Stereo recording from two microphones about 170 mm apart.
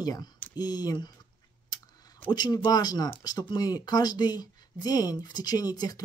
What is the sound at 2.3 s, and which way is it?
Speech, 25° left (ahead or behind).